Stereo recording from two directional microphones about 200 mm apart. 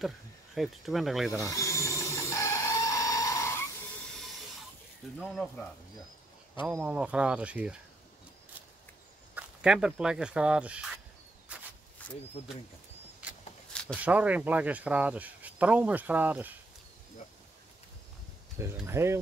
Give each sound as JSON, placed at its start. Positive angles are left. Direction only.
{"t": 0.6, "sound": "speech", "side_deg": 0}
{"t": 1.4, "sound": "a sound", "side_deg": 15}
{"t": 5.2, "sound": "speech", "side_deg": 5}
{"t": 9.3, "sound": "speech", "side_deg": -5}
{"t": 11.5, "sound": "a sound", "side_deg": -5}
{"t": 13.9, "sound": "speech", "side_deg": -5}
{"t": 18.8, "sound": "speech", "side_deg": -15}